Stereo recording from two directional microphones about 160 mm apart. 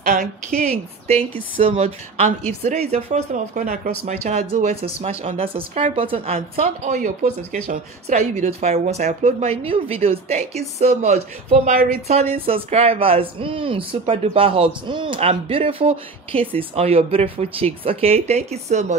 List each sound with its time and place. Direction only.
0.0 s a sound: 55° right (ahead or behind)
0.5 s a woman's voice: 5° left (ahead or behind)
1.0 s speech: 35° right (ahead or behind)